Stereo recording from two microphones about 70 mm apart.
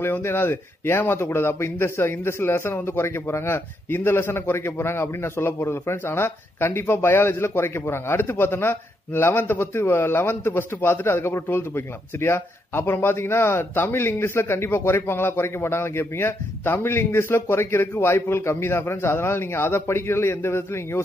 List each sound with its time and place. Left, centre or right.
0.0 s speech: left